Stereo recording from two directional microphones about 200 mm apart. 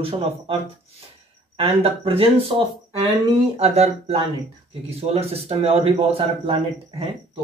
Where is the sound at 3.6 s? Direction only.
30° right (ahead or behind).